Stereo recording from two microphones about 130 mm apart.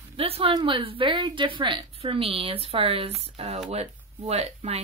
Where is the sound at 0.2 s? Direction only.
45° right (ahead or behind).